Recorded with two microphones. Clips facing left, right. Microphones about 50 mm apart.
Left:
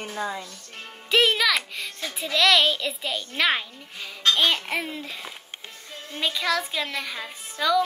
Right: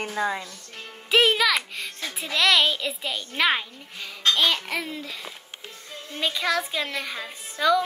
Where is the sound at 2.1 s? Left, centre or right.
Right.